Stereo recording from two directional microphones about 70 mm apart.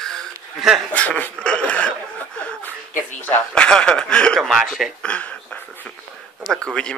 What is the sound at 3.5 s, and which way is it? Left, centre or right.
Speech, centre.